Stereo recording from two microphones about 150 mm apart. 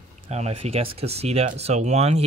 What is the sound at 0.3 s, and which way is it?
Speech, 45° right (ahead or behind).